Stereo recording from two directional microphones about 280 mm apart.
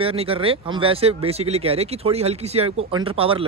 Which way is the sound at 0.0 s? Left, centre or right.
Right.